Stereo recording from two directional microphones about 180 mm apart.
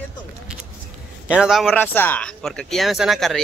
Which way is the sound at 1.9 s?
10° left (ahead or behind).